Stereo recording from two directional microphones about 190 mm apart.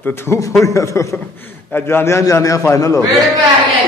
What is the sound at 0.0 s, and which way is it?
A man's voice, 10° left (ahead or behind).